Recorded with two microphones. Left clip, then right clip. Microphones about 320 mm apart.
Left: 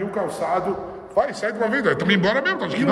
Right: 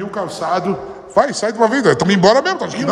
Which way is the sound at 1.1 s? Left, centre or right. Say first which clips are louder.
Right 7 dB; right.